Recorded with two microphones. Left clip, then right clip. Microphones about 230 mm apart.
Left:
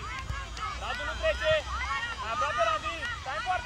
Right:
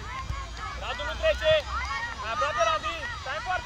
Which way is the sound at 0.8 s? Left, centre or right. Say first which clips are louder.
Right 4 dB; right.